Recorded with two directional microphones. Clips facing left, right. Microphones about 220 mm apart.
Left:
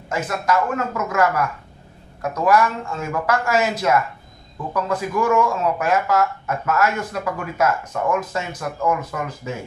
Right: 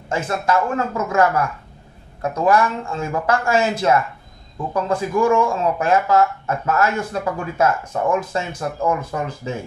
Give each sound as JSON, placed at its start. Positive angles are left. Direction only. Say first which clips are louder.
{"t": 0.1, "sound": "speech", "louder": "right 1 dB", "side_deg": -30}
{"t": 2.4, "sound": "speech", "louder": "even", "side_deg": -30}